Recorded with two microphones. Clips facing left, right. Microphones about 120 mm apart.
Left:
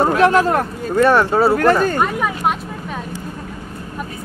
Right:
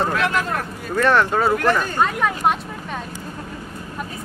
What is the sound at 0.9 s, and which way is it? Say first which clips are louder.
Speech: left 4 dB; 10° left (ahead or behind).